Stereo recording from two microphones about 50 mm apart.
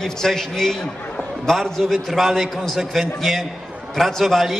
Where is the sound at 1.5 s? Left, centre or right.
Centre.